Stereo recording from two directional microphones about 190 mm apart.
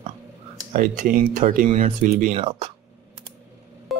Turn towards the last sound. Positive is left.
turn(degrees=0)  # may be behind; listen again after turning